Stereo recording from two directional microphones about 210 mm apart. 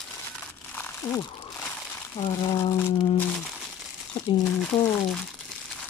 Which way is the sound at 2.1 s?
20° left (ahead or behind).